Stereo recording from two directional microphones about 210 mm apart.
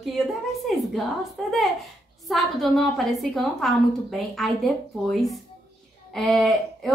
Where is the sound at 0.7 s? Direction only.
Centre (ahead or behind).